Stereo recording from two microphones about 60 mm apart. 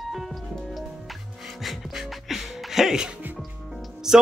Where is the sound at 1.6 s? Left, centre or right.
Centre.